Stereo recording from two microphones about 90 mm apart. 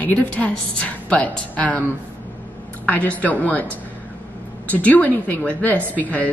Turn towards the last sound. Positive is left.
turn(degrees=20)  # may be behind; listen again after turning